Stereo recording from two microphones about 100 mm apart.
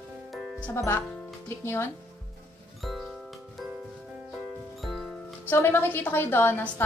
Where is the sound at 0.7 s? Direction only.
25° left (ahead or behind).